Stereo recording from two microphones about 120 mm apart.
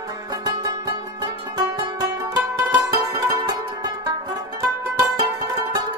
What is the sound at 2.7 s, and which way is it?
Music, 30° right (ahead or behind).